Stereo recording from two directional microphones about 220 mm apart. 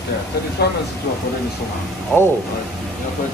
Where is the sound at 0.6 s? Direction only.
45° left (ahead or behind).